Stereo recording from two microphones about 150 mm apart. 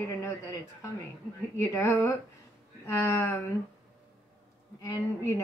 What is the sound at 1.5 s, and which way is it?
Speech, 20° left (ahead or behind).